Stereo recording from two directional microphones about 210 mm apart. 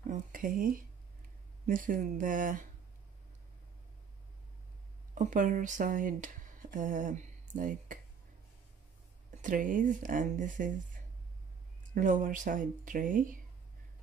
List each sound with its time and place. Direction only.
0.1 s a sound: 40° right (ahead or behind)
1.7 s speech: 40° right (ahead or behind)
5.1 s speech: 40° right (ahead or behind)
9.4 s speech: 40° right (ahead or behind)
11.9 s speech: 40° right (ahead or behind)